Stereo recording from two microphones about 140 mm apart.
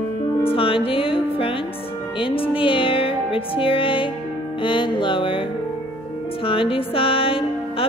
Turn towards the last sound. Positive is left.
turn(degrees=40)  # may be behind; listen again after turning